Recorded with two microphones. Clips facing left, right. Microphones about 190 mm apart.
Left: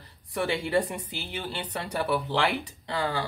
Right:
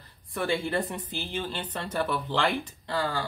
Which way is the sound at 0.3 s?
15° left (ahead or behind).